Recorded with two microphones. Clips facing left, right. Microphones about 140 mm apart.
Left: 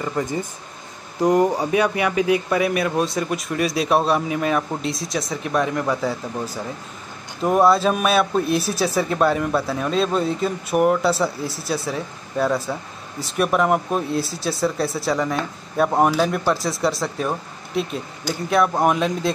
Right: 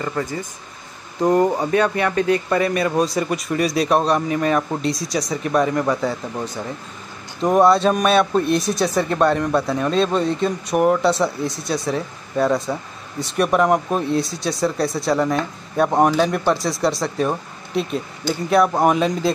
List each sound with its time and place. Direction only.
0.0 s speech: 15° left (ahead or behind); by 19.3 s centre (ahead or behind)